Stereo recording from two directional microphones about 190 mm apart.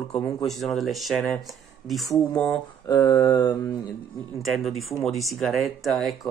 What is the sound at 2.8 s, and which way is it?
Speech, 15° left (ahead or behind).